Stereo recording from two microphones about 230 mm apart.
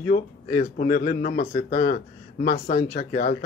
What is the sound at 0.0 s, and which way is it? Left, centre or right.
Speech, left.